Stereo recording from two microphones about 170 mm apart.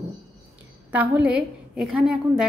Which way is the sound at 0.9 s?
10° right (ahead or behind).